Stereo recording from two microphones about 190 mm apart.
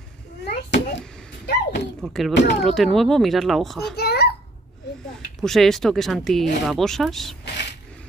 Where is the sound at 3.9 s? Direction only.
55° left (ahead or behind).